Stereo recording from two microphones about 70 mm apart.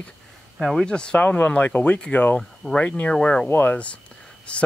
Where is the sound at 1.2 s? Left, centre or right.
Left.